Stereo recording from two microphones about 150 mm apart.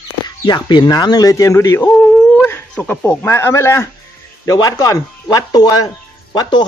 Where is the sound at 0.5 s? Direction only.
30° left (ahead or behind).